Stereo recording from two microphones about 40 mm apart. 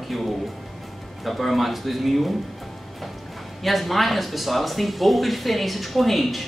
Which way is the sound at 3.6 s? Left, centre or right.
Centre.